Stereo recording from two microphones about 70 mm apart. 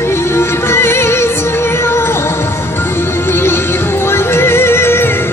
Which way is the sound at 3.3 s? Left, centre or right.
Left.